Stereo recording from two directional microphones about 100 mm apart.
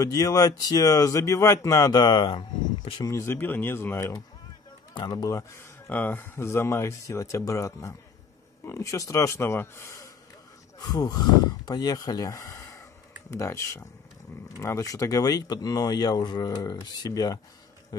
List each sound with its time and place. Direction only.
0.0 s speech: 35° left (ahead or behind); by 2.4 s 50° left (ahead or behind)
3.0 s speech: 30° left (ahead or behind)
4.9 s speech: 45° left (ahead or behind)
5.9 s speech: 20° left (ahead or behind)
10.8 s speech: 40° left (ahead or behind)